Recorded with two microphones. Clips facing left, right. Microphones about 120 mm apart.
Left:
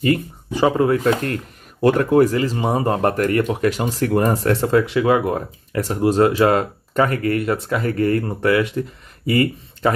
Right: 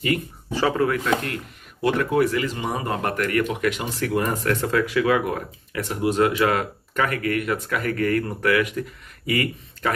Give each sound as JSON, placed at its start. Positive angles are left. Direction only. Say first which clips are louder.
{"t": 0.5, "sound": "speech", "louder": "left 5 dB", "side_deg": 20}